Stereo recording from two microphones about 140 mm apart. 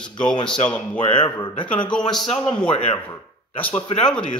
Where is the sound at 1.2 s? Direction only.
35° left (ahead or behind).